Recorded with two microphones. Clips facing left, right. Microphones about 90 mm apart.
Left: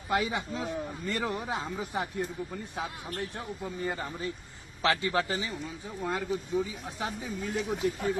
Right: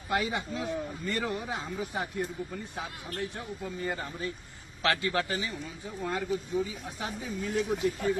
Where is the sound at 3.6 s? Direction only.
25° left (ahead or behind).